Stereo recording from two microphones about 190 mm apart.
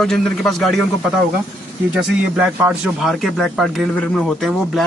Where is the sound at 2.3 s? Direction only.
5° right (ahead or behind).